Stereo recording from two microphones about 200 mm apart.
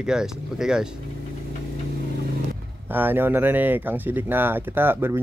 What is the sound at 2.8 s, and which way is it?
Speech, 10° right (ahead or behind).